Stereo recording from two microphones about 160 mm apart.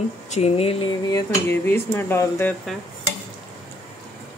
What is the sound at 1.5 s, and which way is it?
Speech, 15° left (ahead or behind).